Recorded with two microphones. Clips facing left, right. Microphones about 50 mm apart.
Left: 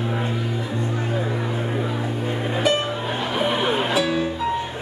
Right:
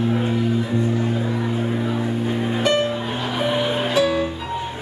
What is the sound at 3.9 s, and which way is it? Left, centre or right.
Music, centre.